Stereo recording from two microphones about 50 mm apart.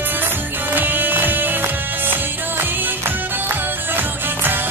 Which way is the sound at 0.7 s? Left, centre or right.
Right.